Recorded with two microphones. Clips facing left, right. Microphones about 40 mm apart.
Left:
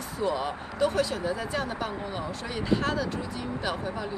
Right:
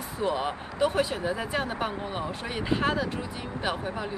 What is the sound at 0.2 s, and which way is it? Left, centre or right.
Speech, right.